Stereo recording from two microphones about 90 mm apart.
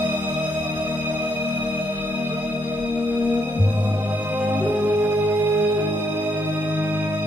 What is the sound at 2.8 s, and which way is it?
Organ, 20° right (ahead or behind).